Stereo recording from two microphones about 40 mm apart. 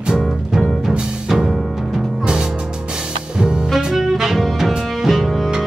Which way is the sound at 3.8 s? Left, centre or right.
Centre.